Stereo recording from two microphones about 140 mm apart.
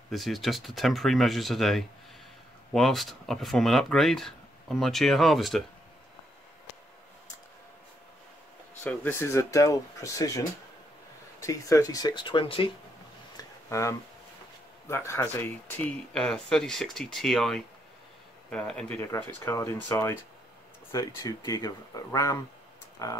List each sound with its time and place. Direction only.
0.1 s speech: centre (ahead or behind)
8.8 s speech: 15° left (ahead or behind); by 12.7 s 35° left (ahead or behind)
13.4 s a sound: 20° left (ahead or behind)
14.9 s speech: 20° left (ahead or behind)
18.9 s speech: 20° left (ahead or behind)